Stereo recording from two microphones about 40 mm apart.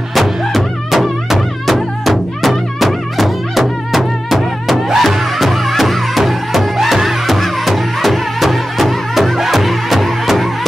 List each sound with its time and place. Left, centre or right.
0.1 s music: centre